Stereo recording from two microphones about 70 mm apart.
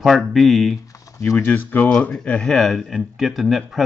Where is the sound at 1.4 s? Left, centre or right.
Left.